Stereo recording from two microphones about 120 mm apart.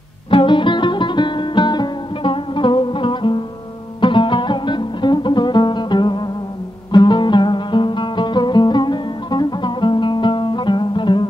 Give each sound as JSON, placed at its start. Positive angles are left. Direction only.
{"t": 0.3, "sound": "music", "side_deg": 45}